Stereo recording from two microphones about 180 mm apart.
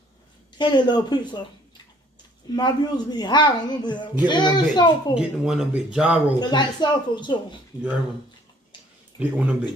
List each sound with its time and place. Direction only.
0.6 s speech: 25° left (ahead or behind)
2.5 s speech: 25° left (ahead or behind)
5.1 s speech: 5° right (ahead or behind)
6.4 s speech: 25° left (ahead or behind)
9.2 s speech: 5° right (ahead or behind)